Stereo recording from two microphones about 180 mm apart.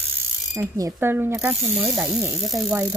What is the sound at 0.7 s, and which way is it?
Speech, 15° right (ahead or behind).